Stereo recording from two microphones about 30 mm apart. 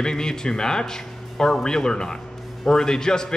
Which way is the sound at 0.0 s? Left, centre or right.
Left.